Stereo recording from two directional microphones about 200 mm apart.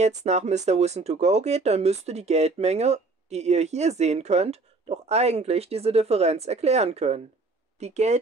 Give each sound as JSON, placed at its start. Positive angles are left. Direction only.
{"t": 0.0, "sound": "speech", "side_deg": -35}